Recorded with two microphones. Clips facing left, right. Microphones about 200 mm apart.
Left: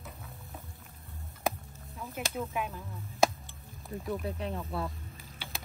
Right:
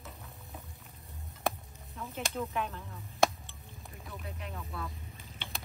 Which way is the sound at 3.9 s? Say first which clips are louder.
Left 12 dB; 35° left (ahead or behind).